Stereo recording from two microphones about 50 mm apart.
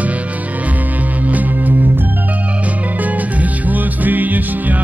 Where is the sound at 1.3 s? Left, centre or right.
Right.